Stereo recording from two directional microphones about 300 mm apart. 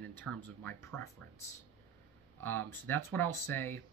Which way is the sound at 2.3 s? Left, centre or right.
Centre.